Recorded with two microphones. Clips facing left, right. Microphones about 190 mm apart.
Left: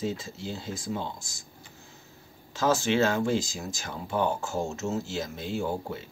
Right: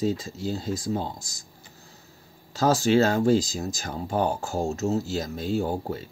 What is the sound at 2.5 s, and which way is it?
Speech, 40° right (ahead or behind).